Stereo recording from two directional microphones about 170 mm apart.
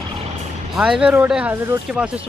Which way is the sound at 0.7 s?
5° right (ahead or behind).